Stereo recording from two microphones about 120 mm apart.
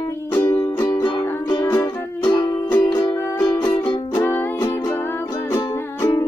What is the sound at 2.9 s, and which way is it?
Music, 25° left (ahead or behind).